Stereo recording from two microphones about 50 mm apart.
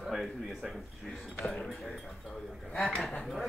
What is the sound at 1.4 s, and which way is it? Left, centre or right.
Speech, centre.